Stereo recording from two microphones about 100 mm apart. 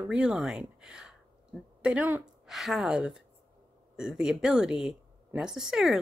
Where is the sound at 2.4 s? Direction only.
5° right (ahead or behind).